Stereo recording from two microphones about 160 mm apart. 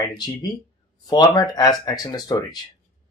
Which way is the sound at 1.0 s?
25° left (ahead or behind).